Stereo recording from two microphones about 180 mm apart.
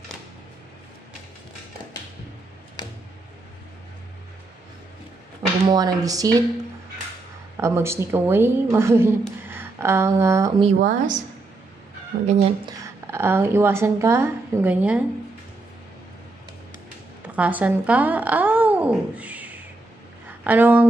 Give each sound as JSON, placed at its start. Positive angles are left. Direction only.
{"t": 5.7, "sound": "speech", "side_deg": -20}
{"t": 7.5, "sound": "a woman's voice", "side_deg": -15}
{"t": 10.6, "sound": "a woman's voice", "side_deg": -45}
{"t": 12.1, "sound": "speech", "side_deg": -55}
{"t": 12.6, "sound": "a woman's voice", "side_deg": -15}
{"t": 17.2, "sound": "a child's voice", "side_deg": -10}